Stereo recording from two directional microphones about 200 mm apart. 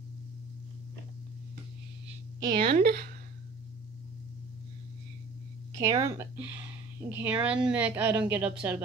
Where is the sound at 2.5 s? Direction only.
45° right (ahead or behind).